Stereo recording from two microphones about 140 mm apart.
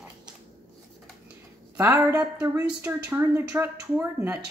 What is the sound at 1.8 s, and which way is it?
Speech, 15° right (ahead or behind).